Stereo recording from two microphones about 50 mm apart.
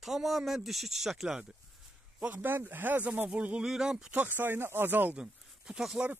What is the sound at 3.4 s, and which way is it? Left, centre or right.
Speech, right.